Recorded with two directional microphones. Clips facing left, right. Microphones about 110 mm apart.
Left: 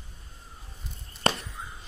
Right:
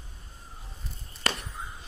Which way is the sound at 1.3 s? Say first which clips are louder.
Left 5 dB; 30° left (ahead or behind).